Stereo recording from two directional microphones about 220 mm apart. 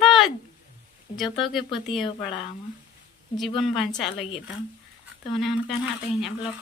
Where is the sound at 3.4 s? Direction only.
Centre (ahead or behind).